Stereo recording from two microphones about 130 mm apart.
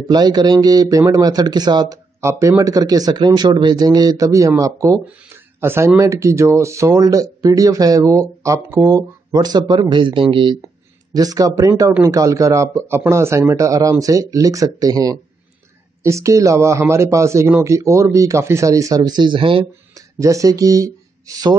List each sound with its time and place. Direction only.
0.0 s speech: 30° right (ahead or behind)
2.2 s speech: 20° right (ahead or behind); by 10.6 s 40° right (ahead or behind)
11.1 s speech: 30° right (ahead or behind)
20.2 s speech: 25° right (ahead or behind)